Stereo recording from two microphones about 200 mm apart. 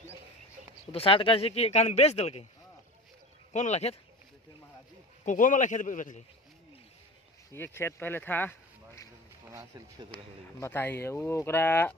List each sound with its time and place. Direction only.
0.9 s speech: 25° left (ahead or behind)
3.5 s speech: 35° left (ahead or behind)
5.2 s speech: 40° left (ahead or behind)
7.5 s speech: 10° left (ahead or behind)
9.5 s speech: 20° right (ahead or behind)
10.6 s speech: 10° left (ahead or behind)